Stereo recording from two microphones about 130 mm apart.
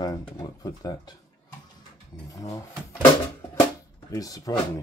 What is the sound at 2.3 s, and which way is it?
Speech, 25° left (ahead or behind).